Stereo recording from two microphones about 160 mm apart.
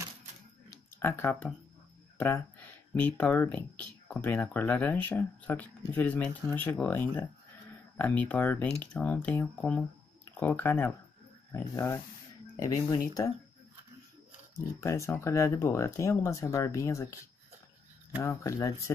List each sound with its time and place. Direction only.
0.7 s a sound: 15° left (ahead or behind)
2.1 s speech: 10° left (ahead or behind)
14.8 s speech: 15° left (ahead or behind)
18.2 s speech: 20° left (ahead or behind)